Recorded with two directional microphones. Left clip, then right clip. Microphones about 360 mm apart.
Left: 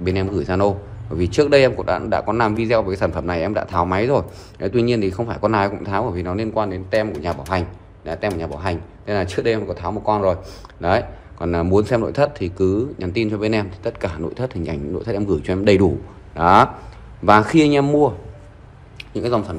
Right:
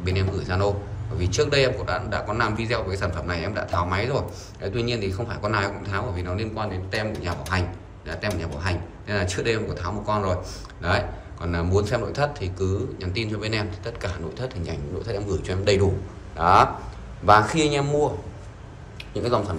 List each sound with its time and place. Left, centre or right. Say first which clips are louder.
0.0 s a man's voice: left 7 dB; centre